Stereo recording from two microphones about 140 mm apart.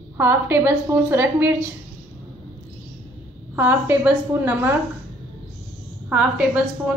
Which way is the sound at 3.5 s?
15° right (ahead or behind).